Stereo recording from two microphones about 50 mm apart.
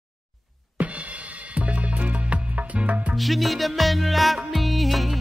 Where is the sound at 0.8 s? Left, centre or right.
Right.